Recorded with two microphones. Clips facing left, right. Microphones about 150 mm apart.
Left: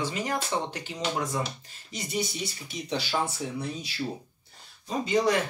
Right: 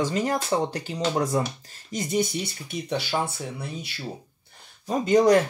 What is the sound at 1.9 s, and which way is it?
Speech, 50° right (ahead or behind).